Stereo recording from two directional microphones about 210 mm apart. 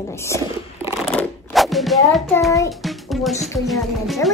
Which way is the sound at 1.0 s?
Centre (ahead or behind).